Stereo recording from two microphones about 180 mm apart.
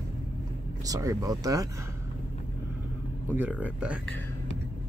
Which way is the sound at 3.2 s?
10° right (ahead or behind).